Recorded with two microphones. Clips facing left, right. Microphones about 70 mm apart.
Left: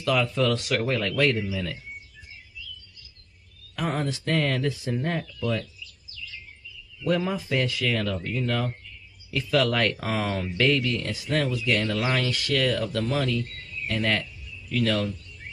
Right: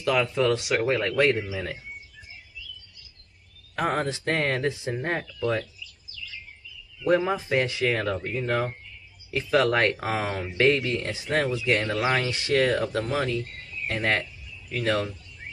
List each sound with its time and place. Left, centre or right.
0.0 s speech: right
3.7 s speech: right
7.1 s speech: right